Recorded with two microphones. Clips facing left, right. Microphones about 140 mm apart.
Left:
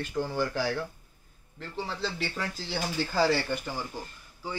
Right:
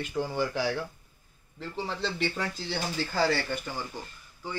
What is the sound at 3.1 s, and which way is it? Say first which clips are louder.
Speech: left 2 dB; 15° left (ahead or behind).